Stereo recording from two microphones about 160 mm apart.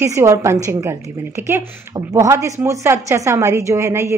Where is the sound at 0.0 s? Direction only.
15° right (ahead or behind).